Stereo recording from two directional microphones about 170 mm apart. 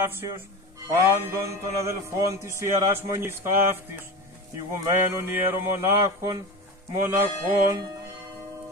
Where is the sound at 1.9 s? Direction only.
20° right (ahead or behind).